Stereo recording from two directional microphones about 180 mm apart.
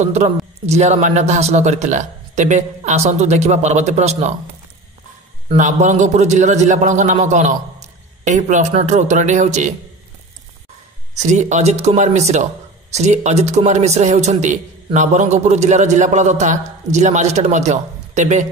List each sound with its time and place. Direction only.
0.0 s a man's voice: 40° right (ahead or behind)
5.5 s a man's voice: 45° right (ahead or behind)
11.1 s a man's voice: 40° right (ahead or behind)